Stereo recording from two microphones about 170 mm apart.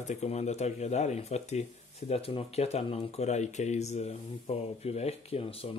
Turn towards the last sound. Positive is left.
turn(degrees=35)  # may be behind; listen again after turning